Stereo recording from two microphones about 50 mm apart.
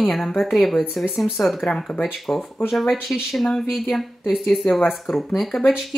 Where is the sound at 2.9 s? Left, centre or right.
Centre.